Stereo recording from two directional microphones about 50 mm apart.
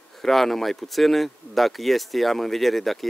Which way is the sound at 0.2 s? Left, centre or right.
Centre.